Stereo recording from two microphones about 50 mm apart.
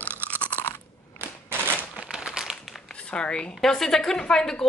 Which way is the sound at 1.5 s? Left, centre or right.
Left.